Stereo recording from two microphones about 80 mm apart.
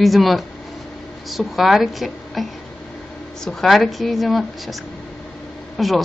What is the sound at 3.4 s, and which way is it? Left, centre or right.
A woman's voice, centre.